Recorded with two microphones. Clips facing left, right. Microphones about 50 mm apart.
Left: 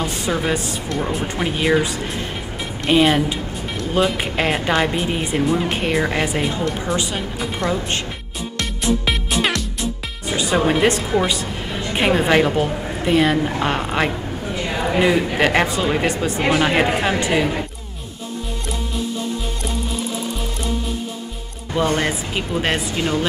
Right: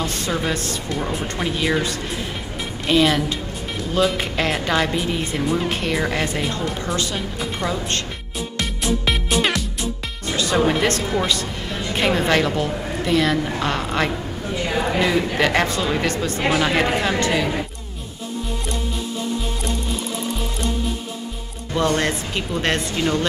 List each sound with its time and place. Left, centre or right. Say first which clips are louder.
0.0 s a woman's voice: left 2 dB; centre
5.4 s a woman's voice: left 3 dB; centre
8.5 s music: left 3 dB; centre
10.2 s music: left 1 dB; centre
10.6 s a woman's voice: left 3 dB; centre
14.5 s a sound: right 1 dB; centre
15.0 s a woman's voice: left 4 dB; centre
21.7 s a woman's voice: left 1 dB; centre